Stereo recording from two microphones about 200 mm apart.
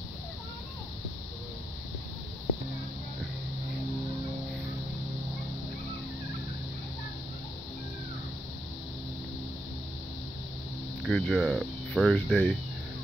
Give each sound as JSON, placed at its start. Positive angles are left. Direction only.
{"t": 11.1, "sound": "speech", "side_deg": 0}